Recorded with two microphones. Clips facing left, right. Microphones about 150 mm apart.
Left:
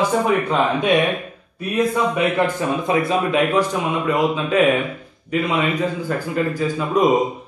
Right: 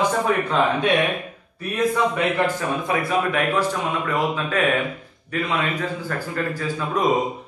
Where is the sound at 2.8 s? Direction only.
20° left (ahead or behind).